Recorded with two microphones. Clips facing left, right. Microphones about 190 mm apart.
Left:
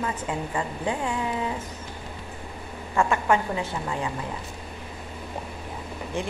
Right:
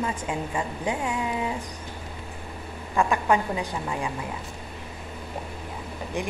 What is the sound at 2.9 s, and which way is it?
A woman's voice, 15° right (ahead or behind).